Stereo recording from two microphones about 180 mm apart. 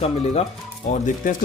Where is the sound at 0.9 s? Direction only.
45° left (ahead or behind).